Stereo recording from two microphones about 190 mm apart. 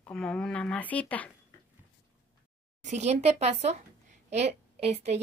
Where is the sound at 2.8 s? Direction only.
35° right (ahead or behind).